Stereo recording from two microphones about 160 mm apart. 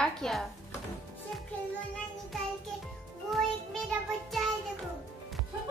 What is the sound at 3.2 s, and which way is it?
Child singing, centre (ahead or behind).